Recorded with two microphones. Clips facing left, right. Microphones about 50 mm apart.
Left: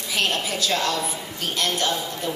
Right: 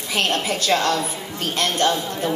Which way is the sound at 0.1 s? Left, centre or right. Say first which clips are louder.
Right 3 dB; right.